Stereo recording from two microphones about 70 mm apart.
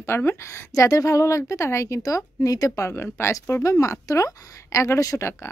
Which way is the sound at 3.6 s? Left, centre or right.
Left.